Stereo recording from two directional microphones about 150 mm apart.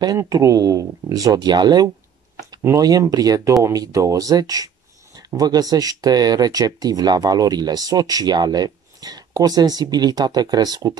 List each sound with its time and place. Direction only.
0.0 s speech: 25° right (ahead or behind)